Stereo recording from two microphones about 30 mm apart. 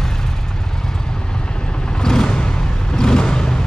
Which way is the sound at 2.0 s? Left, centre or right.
Left.